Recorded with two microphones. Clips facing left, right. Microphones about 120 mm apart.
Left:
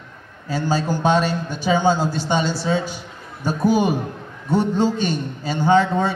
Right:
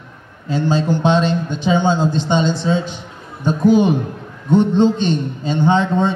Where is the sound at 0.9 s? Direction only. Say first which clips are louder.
Right 1 dB; 25° right (ahead or behind).